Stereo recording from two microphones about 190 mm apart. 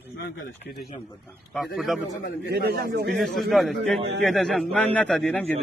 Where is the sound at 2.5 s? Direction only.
55° right (ahead or behind).